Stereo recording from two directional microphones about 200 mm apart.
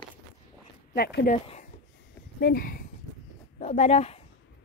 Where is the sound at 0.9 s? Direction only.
50° left (ahead or behind).